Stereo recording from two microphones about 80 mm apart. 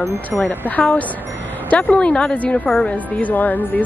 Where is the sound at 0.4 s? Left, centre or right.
Left.